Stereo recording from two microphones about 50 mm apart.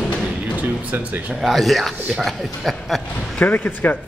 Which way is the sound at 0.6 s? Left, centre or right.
Right.